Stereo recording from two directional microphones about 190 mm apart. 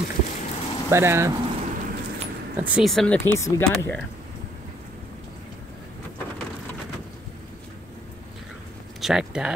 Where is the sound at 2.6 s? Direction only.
5° right (ahead or behind).